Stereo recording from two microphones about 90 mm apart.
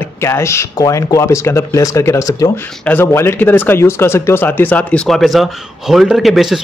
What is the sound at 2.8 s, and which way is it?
Speech, 25° left (ahead or behind).